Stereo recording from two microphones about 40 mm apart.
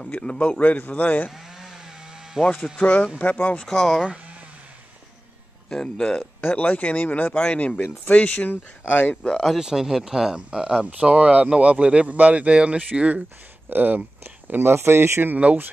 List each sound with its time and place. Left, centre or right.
0.2 s a man's voice: left
1.3 s chainsaw: centre
2.8 s a man's voice: left
3.6 s speech: centre
5.7 s speech: centre
6.5 s speech: left
7.5 s a man's voice: left
8.5 s speech: left
9.1 s speech: left
9.6 s speech: centre
10.9 s speech: right
13.7 s speech: right
14.7 s speech: right
15.3 s speech: right